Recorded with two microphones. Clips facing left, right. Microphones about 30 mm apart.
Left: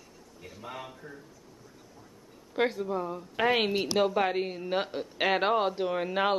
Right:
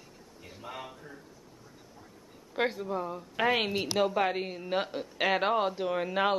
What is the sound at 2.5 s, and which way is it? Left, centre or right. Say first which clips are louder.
Speech: left 2 dB; centre.